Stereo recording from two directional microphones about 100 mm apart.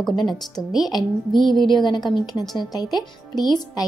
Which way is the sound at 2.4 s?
Centre (ahead or behind).